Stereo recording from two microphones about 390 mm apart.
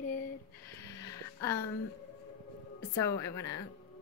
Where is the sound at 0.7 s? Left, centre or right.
Centre.